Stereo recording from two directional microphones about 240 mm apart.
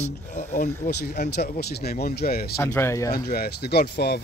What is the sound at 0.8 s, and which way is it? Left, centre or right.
Speech, left.